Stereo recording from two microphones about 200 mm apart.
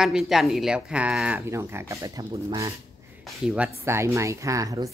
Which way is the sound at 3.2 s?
5° right (ahead or behind).